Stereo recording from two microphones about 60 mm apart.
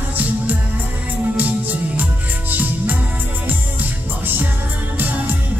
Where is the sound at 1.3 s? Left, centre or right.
Right.